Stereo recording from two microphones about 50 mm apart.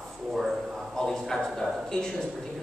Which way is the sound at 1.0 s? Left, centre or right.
Centre.